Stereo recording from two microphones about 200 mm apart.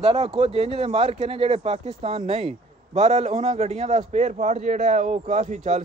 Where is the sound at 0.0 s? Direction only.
30° right (ahead or behind).